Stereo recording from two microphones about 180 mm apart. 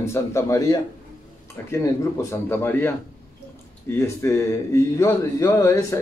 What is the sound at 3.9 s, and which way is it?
Speech, 15° left (ahead or behind).